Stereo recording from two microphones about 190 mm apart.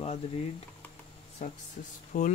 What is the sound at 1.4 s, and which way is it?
Speech, 40° left (ahead or behind).